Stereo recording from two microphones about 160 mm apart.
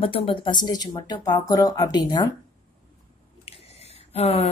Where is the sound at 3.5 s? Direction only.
40° left (ahead or behind).